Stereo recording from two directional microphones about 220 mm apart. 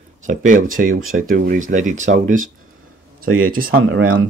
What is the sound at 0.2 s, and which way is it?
Speech, 35° right (ahead or behind).